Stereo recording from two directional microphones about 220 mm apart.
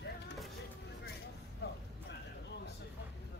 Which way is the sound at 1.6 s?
50° left (ahead or behind).